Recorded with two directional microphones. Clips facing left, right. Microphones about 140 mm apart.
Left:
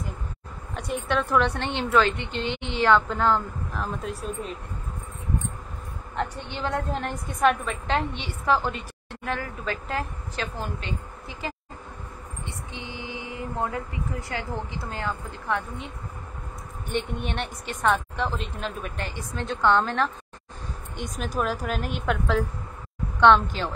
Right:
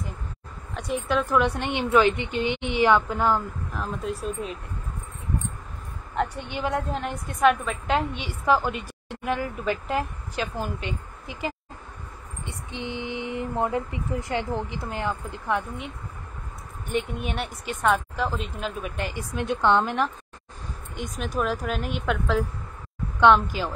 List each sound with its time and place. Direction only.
0.7 s a woman's voice: centre (ahead or behind)
3.7 s a woman's voice: centre (ahead or behind)
6.9 s a woman's voice: centre (ahead or behind)
16.9 s a woman's voice: 5° right (ahead or behind)
18.9 s a woman's voice: 15° right (ahead or behind)
20.9 s a woman's voice: centre (ahead or behind)